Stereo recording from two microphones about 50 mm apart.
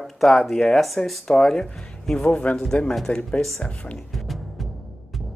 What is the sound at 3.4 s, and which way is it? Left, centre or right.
Speech, centre.